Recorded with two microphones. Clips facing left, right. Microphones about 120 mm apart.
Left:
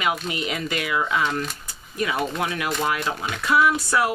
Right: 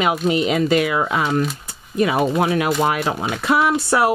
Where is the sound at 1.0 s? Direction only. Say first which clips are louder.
Right 4 dB; 40° right (ahead or behind).